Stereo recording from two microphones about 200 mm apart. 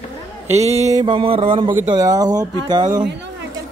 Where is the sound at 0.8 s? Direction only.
20° right (ahead or behind).